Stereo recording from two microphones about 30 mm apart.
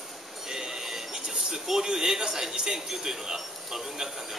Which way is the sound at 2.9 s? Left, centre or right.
Centre.